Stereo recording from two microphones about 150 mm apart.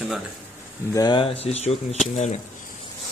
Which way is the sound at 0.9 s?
30° left (ahead or behind).